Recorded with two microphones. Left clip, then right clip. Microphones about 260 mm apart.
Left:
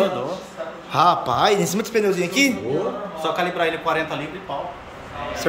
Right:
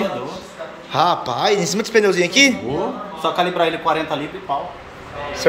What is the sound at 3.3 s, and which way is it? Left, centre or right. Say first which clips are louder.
Speech: right 4 dB; right.